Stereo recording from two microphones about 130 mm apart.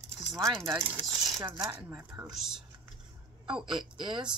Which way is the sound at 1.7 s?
20° right (ahead or behind).